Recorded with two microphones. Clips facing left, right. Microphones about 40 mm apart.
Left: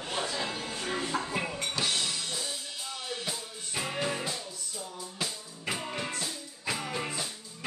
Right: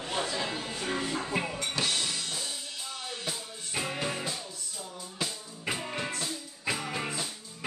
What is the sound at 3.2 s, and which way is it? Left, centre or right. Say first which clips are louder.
Music: even; centre.